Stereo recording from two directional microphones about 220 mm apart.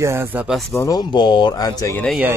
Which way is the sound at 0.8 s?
20° left (ahead or behind).